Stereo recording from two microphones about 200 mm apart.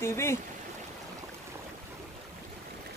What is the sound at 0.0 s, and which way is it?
Speech, 10° left (ahead or behind).